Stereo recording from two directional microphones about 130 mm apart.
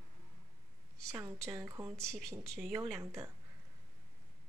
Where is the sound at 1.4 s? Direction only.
25° right (ahead or behind).